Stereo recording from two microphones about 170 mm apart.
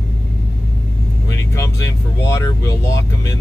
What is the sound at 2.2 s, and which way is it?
Speech, 15° left (ahead or behind).